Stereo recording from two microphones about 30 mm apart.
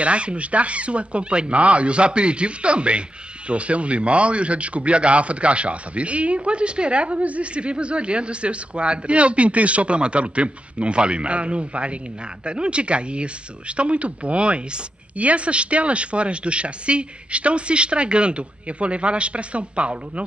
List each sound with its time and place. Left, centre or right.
0.0 s speech: right